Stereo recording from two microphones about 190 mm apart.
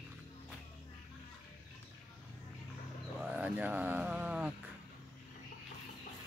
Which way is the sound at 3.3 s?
10° right (ahead or behind).